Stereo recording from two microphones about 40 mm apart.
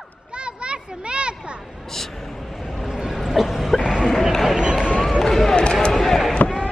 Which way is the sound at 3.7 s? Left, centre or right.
Right.